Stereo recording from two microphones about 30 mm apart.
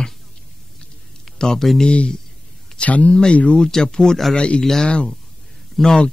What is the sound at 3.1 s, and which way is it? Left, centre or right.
Speech, left.